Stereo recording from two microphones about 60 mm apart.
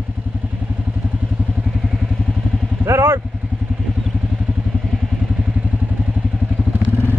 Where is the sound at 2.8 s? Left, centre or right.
Right.